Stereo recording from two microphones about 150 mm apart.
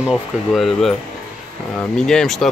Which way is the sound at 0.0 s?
Centre (ahead or behind).